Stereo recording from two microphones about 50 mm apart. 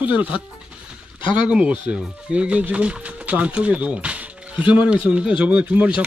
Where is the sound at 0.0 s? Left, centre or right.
Right.